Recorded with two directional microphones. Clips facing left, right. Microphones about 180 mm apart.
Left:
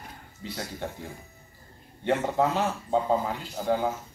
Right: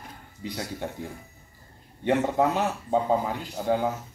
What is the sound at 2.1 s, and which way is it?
Speech, 15° right (ahead or behind).